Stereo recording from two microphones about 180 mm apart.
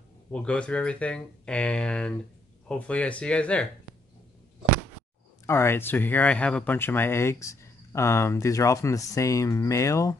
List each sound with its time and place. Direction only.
0.3 s speech: 5° left (ahead or behind)
5.5 s speech: 15° left (ahead or behind)